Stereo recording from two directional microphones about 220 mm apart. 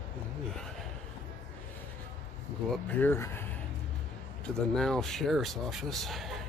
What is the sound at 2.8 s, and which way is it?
Speech, 10° left (ahead or behind).